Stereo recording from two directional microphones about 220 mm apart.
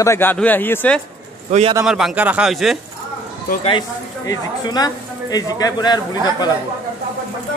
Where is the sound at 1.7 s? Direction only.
Centre (ahead or behind).